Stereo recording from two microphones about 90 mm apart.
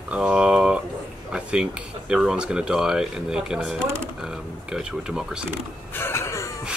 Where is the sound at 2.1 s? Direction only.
10° right (ahead or behind).